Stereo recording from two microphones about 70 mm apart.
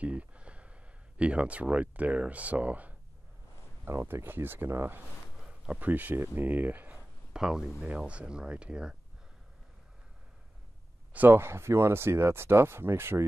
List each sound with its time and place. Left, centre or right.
0.0 s a sound: centre
3.9 s speech: right
5.5 s speech: right
7.3 s speech: centre
11.1 s speech: right